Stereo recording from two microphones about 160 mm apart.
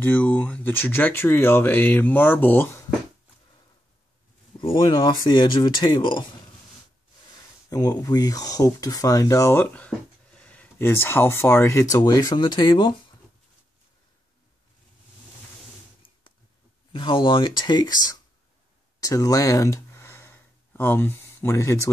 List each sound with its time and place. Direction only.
0.0 s speech: 10° left (ahead or behind)
4.6 s speech: 30° left (ahead or behind)
7.7 s speech: 20° left (ahead or behind)
16.9 s speech: 30° left (ahead or behind)
18.9 s a sound: 20° left (ahead or behind)